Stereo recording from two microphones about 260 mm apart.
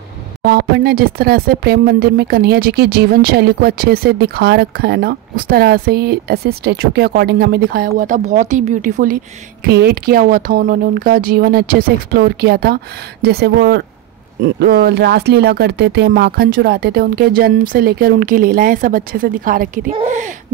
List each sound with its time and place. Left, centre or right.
0.4 s speech: right